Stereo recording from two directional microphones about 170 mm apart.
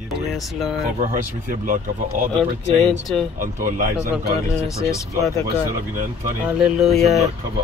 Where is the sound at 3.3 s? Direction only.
50° right (ahead or behind).